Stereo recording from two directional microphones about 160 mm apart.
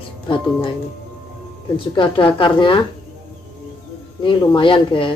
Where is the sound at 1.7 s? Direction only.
30° left (ahead or behind).